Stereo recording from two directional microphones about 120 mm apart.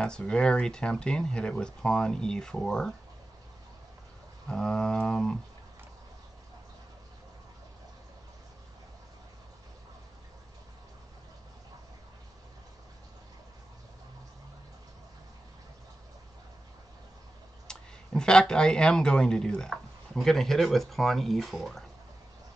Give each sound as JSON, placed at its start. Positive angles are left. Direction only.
{"t": 0.0, "sound": "speech", "side_deg": 5}
{"t": 4.5, "sound": "speech", "side_deg": 5}
{"t": 17.6, "sound": "speech", "side_deg": 5}